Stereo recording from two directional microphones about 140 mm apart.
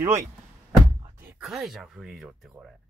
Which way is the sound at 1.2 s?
5° right (ahead or behind).